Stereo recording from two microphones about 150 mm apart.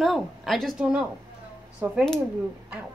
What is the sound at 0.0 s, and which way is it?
Speech, centre (ahead or behind).